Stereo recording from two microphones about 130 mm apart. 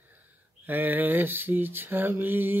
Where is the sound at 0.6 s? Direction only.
15° right (ahead or behind).